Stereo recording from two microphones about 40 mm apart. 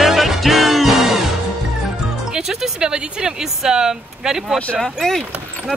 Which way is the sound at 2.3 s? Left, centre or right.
Centre.